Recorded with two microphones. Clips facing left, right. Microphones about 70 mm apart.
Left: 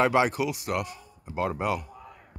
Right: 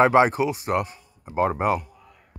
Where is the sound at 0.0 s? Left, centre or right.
Right.